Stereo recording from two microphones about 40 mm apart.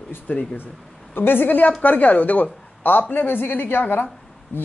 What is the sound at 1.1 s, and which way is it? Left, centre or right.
Speech, left.